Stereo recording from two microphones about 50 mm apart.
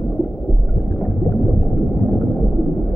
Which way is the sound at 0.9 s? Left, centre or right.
Centre.